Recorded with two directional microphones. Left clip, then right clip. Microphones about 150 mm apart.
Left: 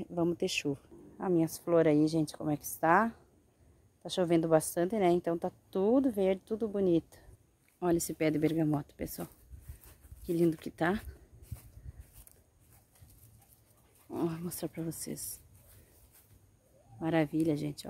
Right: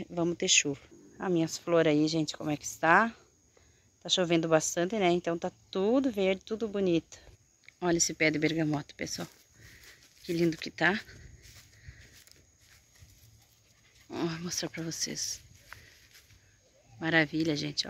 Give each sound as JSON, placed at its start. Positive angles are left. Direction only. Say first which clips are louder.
{"t": 0.0, "sound": "a woman's voice", "louder": "right 1 dB", "side_deg": 15}
{"t": 9.8, "sound": "a sound", "louder": "even", "side_deg": 15}
{"t": 10.6, "sound": "speech", "louder": "right 5 dB", "side_deg": 25}
{"t": 14.1, "sound": "a woman's voice", "louder": "right 2 dB", "side_deg": 15}
{"t": 17.0, "sound": "a woman's voice", "louder": "right 3 dB", "side_deg": 15}